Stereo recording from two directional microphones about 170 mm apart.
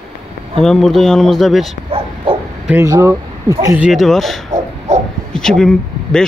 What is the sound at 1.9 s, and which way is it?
Bow-wow, 35° right (ahead or behind).